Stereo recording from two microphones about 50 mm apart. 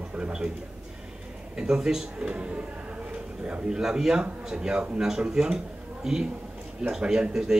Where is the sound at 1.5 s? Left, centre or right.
Centre.